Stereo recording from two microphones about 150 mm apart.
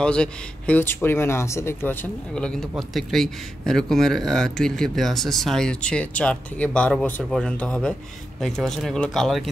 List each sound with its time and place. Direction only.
0.0 s a man's voice: 5° left (ahead or behind)